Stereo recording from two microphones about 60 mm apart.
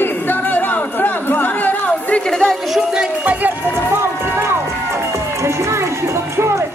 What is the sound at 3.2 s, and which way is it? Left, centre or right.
Run, right.